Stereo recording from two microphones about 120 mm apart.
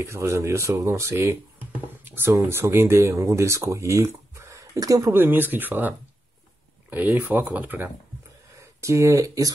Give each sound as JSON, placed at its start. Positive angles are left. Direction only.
{"t": 0.0, "sound": "speech", "side_deg": -20}
{"t": 5.1, "sound": "speech", "side_deg": -15}
{"t": 8.5, "sound": "speech", "side_deg": -25}